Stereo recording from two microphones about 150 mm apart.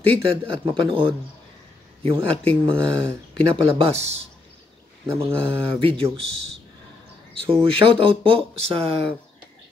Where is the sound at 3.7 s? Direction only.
45° right (ahead or behind).